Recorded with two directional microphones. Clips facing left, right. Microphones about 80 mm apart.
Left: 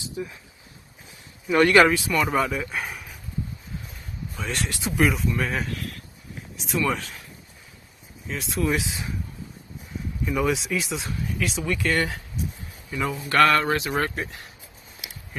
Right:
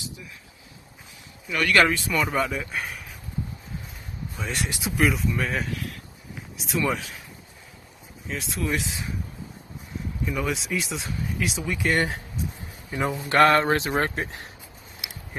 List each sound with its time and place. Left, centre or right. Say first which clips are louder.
0.2 s speech: left 12 dB; left
1.5 s speech: left 4 dB; left
1.9 s speech: left 2 dB; centre
4.4 s speech: left 1 dB; centre
8.3 s speech: left 3 dB; centre
10.2 s speech: left 4 dB; centre
11.9 s speech: right 2 dB; right
13.3 s speech: right 1 dB; right